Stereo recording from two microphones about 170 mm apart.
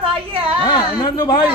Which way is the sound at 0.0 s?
35° right (ahead or behind).